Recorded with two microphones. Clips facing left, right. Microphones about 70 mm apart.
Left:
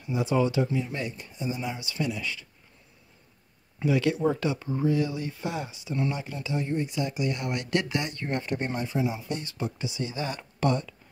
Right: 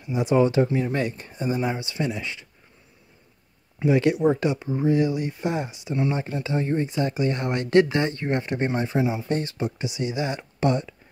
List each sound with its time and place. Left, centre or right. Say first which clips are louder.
0.0 s speech: right 5 dB; right
0.7 s speech: right 6 dB; right
1.1 s speech: right 6 dB; right
1.8 s speech: right 3 dB; right
3.8 s speech: right 5 dB; right
9.6 s speech: right 4 dB; right